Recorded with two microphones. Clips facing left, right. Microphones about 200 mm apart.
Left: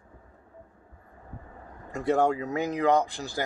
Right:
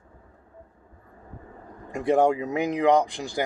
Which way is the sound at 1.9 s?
15° right (ahead or behind).